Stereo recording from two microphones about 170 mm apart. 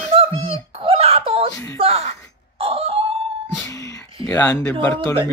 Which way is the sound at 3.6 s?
20° left (ahead or behind).